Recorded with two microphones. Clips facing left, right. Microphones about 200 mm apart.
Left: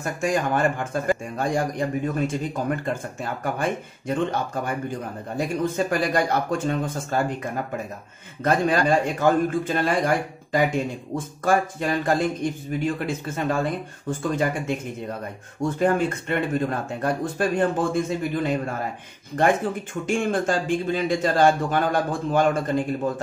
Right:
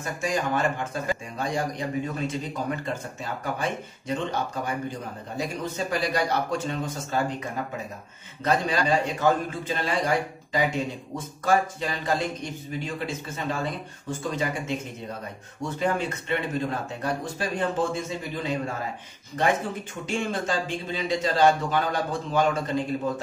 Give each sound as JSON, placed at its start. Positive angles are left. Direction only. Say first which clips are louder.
{"t": 0.0, "sound": "a man's voice", "louder": "left 4 dB", "side_deg": 50}
{"t": 20.1, "sound": "a man's voice", "louder": "left 5 dB", "side_deg": 50}